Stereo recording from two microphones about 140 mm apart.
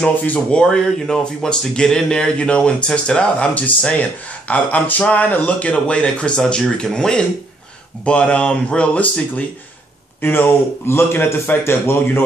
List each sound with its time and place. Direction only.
0.0 s speech: 10° left (ahead or behind)
10.2 s speech: 15° left (ahead or behind)